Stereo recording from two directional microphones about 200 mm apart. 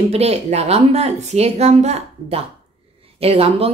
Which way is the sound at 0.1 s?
30° right (ahead or behind).